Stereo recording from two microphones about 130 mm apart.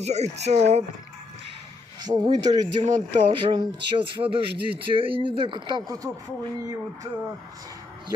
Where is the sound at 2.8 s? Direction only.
65° right (ahead or behind).